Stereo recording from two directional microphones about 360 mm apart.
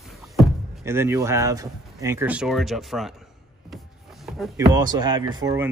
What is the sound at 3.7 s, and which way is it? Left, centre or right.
Power windows, centre.